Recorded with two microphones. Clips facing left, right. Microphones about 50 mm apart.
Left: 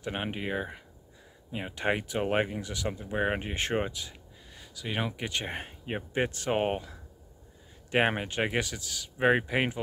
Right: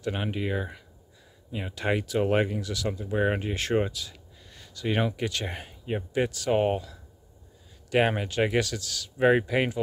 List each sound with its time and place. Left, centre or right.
0.0 s speech: left
4.6 s speech: centre
5.1 s speech: left